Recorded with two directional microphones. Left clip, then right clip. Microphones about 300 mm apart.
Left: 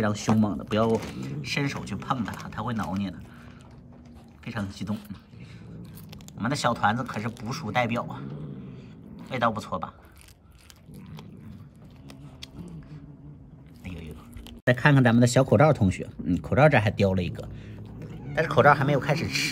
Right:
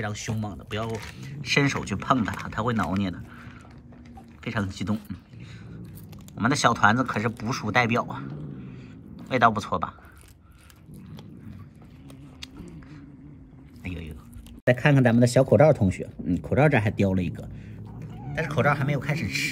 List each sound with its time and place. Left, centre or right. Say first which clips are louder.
0.0 s speech: left 7 dB; centre
4.5 s speech: right 4 dB; centre
6.3 s speech: right 4 dB; centre
13.8 s biting: right 4 dB; centre
14.6 s speech: even; centre
16.6 s speech: left 4 dB; right
17.0 s speech: left 1 dB; centre